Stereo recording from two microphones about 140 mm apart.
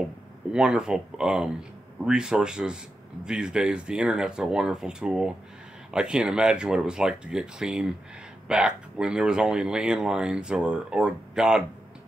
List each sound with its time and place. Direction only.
0.5 s speech: 5° right (ahead or behind)